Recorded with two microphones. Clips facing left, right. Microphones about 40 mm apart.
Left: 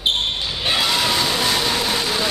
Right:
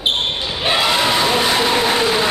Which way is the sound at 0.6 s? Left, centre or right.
Centre.